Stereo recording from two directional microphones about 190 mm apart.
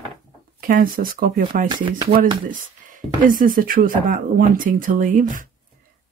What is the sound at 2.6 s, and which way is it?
Speech, 45° right (ahead or behind).